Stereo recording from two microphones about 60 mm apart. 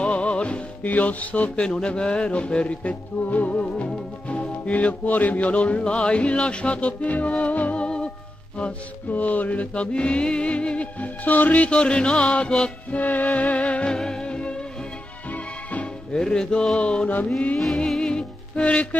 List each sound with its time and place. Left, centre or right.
0.0 s music: centre
1.7 s music: centre
13.0 s music: left